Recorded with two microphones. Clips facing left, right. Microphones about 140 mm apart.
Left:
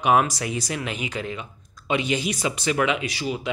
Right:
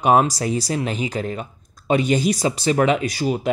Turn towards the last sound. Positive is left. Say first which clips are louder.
# right 6 dB
turn(degrees=-45)  # may be behind; listen again after turning